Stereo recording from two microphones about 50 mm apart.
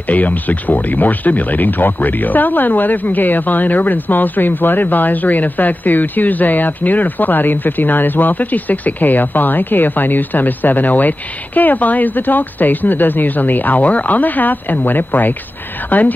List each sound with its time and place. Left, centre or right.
0.0 s speech: left